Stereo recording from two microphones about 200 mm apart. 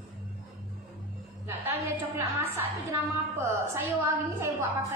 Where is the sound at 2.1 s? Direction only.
15° right (ahead or behind).